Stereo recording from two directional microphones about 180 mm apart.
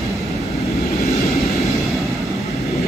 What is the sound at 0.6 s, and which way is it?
Vehicle, 35° left (ahead or behind).